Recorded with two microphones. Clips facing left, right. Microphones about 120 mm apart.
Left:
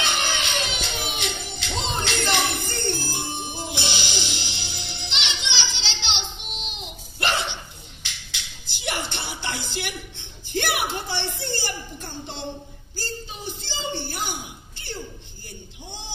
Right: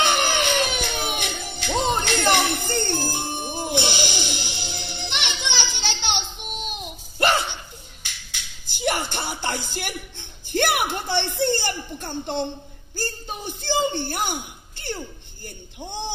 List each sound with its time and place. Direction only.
0.1 s music: 50° right (ahead or behind)
5.8 s hiccup: 50° right (ahead or behind)
8.0 s music: 50° right (ahead or behind)
12.9 s a sound: 55° right (ahead or behind)
15.4 s music: 55° right (ahead or behind)